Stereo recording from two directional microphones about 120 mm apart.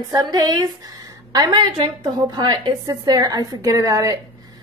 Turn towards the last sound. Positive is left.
turn(degrees=-30)  # may be behind; listen again after turning